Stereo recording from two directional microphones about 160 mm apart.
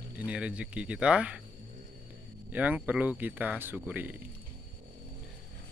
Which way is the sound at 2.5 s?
10° right (ahead or behind).